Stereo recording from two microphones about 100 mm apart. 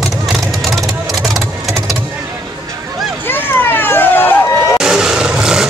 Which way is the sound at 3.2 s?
20° left (ahead or behind).